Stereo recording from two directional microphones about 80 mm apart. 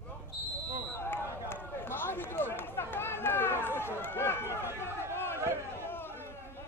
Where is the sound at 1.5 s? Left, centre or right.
Left.